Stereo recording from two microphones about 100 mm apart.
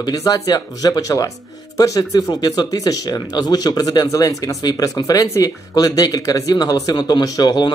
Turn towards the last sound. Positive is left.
turn(degrees=45)  # may be behind; listen again after turning